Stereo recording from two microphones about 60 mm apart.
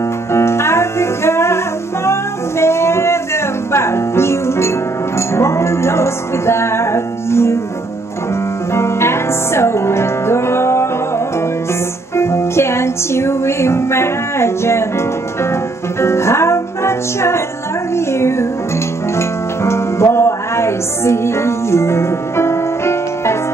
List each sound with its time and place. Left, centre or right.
0.3 s music: left
2.6 s music: left
8.7 s music: left
12.2 s music: left
16.0 s music: left